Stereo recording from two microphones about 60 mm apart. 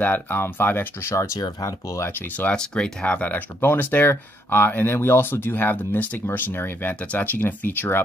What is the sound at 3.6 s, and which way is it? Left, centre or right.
Speech, left.